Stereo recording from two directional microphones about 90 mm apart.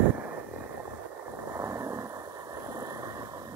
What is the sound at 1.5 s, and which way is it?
Vehicle, 35° right (ahead or behind).